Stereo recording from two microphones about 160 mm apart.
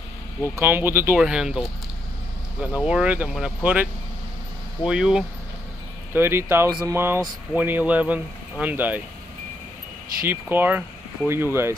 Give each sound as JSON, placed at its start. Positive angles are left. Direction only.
{"t": 0.6, "sound": "speech", "side_deg": -15}
{"t": 10.2, "sound": "speech", "side_deg": -15}